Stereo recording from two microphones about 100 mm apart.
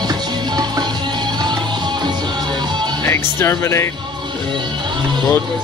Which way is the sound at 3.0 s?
25° left (ahead or behind).